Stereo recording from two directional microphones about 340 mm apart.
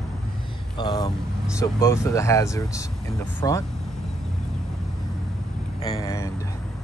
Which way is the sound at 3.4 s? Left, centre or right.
Centre.